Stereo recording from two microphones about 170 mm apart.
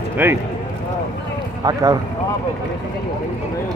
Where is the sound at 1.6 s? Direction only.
25° right (ahead or behind).